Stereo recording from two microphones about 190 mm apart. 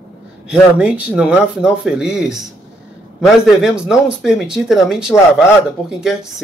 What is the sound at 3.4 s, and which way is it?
Speech, 5° right (ahead or behind).